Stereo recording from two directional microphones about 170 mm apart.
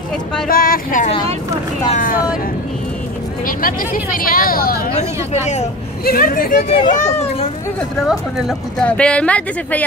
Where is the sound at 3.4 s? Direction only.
55° left (ahead or behind).